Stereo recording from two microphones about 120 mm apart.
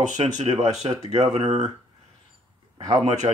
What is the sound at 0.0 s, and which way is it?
Speech, 75° right (ahead or behind).